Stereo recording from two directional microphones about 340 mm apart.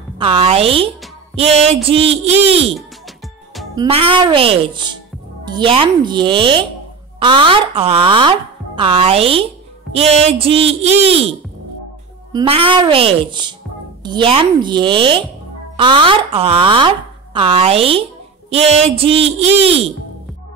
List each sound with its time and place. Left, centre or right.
0.2 s speech: centre
3.7 s speech: centre